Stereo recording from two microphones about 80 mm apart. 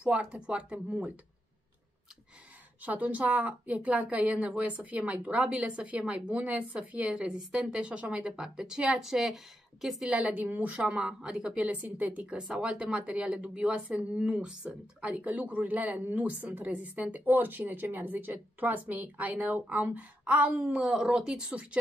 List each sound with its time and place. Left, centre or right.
0.0 s a woman's voice: centre
2.8 s a woman's voice: centre
10.1 s a woman's voice: centre
10.8 s a woman's voice: centre